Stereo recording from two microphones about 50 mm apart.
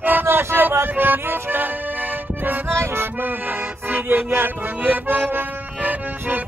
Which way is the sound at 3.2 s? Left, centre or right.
Right.